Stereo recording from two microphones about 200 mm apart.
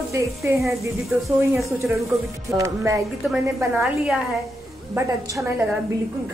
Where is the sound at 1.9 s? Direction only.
15° right (ahead or behind).